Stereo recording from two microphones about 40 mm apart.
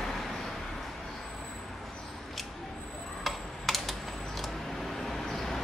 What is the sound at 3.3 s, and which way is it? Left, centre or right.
Typing, centre.